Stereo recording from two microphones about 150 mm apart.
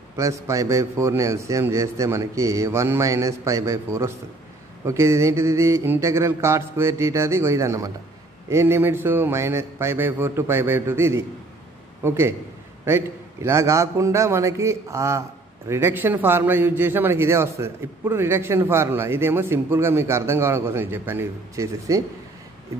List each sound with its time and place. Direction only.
0.1 s a man's voice: 20° right (ahead or behind)